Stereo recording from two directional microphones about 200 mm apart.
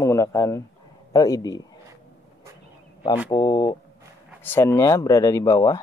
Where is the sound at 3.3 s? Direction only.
20° left (ahead or behind).